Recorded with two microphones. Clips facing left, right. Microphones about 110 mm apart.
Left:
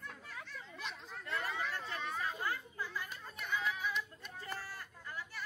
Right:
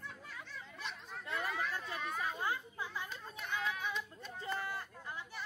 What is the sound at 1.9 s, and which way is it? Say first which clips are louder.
Children playing: even; 5° right (ahead or behind).